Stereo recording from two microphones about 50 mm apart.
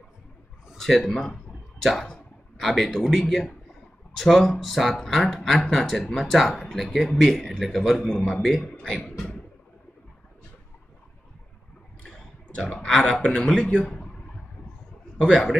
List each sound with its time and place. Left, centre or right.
0.7 s a sound: centre
2.5 s speech: centre
12.4 s speech: centre
15.1 s speech: centre